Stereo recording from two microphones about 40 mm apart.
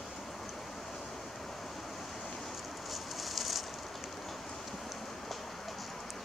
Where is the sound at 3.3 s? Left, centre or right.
Centre.